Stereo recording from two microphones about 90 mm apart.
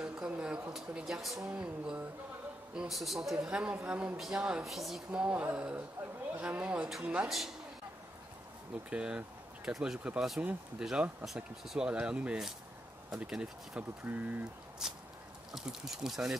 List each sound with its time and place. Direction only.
0.0 s a sound: 10° right (ahead or behind)
1.5 s speech: 10° right (ahead or behind)
5.1 s speech: 15° right (ahead or behind)
8.9 s speech: 10° right (ahead or behind)
14.8 s speech: 5° right (ahead or behind)